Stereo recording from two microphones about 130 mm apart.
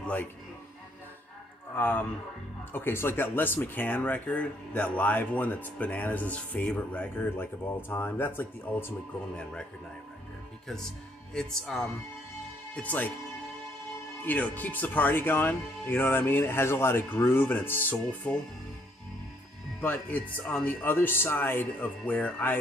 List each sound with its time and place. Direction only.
0.0 s speech: 15° left (ahead or behind)
1.8 s speech: 15° left (ahead or behind)
11.3 s speech: 5° left (ahead or behind)
14.2 s speech: 10° left (ahead or behind)
19.8 s speech: 15° left (ahead or behind)